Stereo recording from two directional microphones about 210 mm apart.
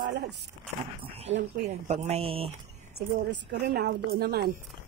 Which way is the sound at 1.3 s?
30° right (ahead or behind).